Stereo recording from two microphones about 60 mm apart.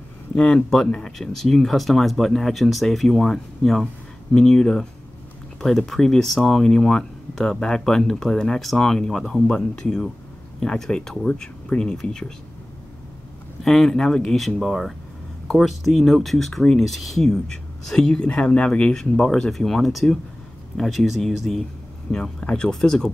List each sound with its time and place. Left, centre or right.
0.4 s speech: centre
13.7 s speech: centre
22.4 s speech: centre